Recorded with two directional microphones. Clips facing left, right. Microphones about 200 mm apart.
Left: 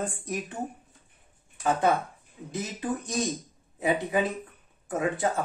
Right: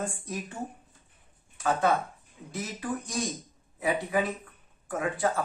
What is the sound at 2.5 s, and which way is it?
Speech, 20° left (ahead or behind).